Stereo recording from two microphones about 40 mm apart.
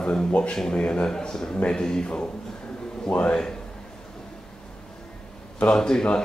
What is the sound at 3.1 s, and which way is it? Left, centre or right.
Speech, left.